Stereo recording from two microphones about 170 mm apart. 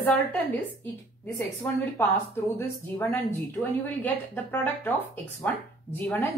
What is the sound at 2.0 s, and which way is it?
Speech, 15° left (ahead or behind).